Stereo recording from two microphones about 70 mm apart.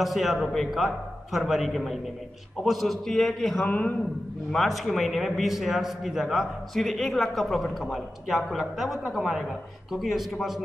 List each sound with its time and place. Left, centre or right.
0.0 s a man's voice: centre
3.6 s a man's voice: centre
4.5 s a man's voice: centre